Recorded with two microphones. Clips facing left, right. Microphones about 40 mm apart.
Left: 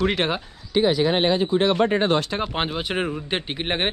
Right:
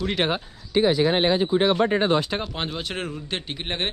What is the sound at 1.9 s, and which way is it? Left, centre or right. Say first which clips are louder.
Speech: left 1 dB; left.